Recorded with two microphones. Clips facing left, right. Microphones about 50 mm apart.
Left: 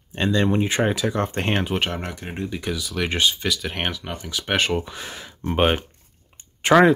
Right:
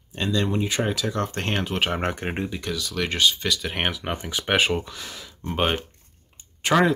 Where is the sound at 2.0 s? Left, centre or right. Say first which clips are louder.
Right 6 dB; right.